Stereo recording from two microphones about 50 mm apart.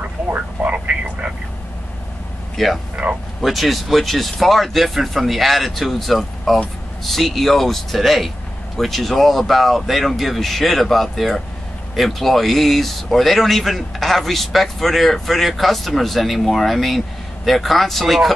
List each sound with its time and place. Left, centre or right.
0.3 s a sound: right
2.5 s speech: centre
3.0 s speech: right
3.3 s speech: centre